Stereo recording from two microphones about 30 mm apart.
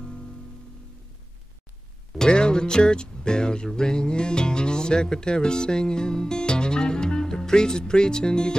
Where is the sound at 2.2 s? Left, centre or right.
Left.